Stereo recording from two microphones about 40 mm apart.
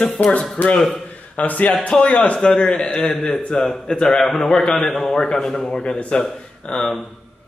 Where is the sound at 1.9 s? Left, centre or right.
Left.